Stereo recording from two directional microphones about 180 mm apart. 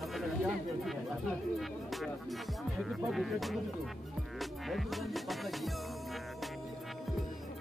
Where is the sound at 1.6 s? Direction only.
Centre (ahead or behind).